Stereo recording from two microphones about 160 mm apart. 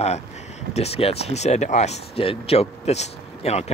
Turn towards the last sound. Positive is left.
turn(degrees=40)  # may be behind; listen again after turning